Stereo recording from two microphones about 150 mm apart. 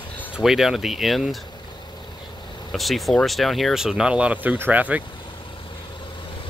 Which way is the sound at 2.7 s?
Centre (ahead or behind).